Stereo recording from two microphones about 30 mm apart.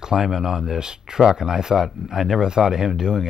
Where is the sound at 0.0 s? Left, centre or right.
Right.